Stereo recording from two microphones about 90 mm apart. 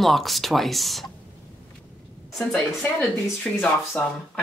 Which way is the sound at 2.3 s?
5° left (ahead or behind).